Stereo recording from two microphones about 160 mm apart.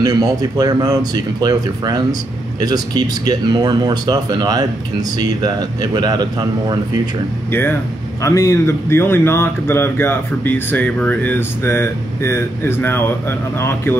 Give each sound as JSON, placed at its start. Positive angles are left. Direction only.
{"t": 0.4, "sound": "speech", "side_deg": -25}
{"t": 8.2, "sound": "speech", "side_deg": 20}